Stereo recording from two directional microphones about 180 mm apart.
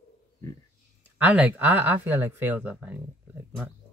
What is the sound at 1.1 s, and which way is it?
Speech, 10° right (ahead or behind).